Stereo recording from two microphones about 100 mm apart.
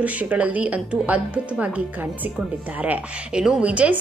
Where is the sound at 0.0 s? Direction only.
15° right (ahead or behind).